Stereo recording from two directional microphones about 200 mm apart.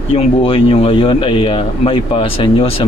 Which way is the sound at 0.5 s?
25° left (ahead or behind).